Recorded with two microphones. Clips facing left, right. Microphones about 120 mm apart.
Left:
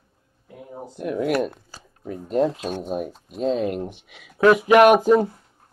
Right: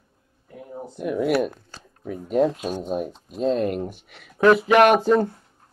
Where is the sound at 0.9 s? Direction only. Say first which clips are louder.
Right 1 dB; centre (ahead or behind).